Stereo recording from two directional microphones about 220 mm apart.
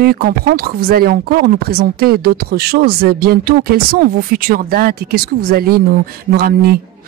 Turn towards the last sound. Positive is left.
turn(degrees=-45)  # may be behind; listen again after turning